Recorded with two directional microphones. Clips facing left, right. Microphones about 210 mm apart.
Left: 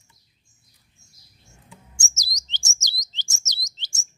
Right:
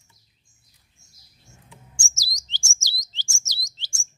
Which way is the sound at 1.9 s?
20° left (ahead or behind).